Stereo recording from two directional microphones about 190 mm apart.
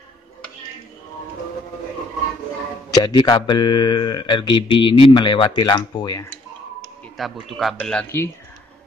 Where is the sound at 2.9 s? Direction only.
20° left (ahead or behind).